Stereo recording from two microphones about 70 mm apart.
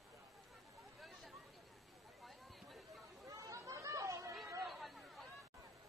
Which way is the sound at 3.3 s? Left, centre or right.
Right.